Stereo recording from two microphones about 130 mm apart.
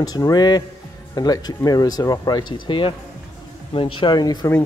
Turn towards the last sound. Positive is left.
turn(degrees=30)  # may be behind; listen again after turning